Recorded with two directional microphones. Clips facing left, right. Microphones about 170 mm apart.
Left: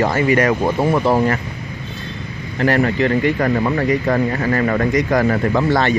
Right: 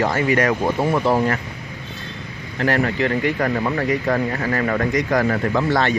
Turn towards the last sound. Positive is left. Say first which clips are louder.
# left 3 dB
turn(degrees=25)  # may be behind; listen again after turning